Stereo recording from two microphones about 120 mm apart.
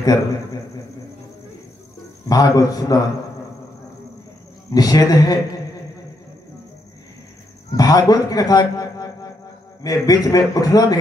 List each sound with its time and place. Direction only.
0.0 s a man's voice: 30° left (ahead or behind)
2.2 s a man's voice: 30° left (ahead or behind)
4.6 s a man's voice: 30° left (ahead or behind)
7.7 s a man's voice: 30° left (ahead or behind)